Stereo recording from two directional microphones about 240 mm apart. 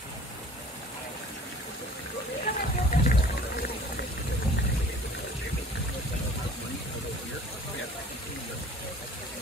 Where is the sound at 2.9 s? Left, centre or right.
Left.